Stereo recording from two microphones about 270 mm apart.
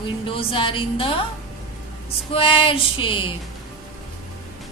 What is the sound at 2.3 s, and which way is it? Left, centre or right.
A woman's voice, centre.